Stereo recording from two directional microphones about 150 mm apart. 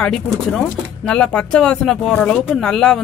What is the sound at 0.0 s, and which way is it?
Speech, 5° left (ahead or behind).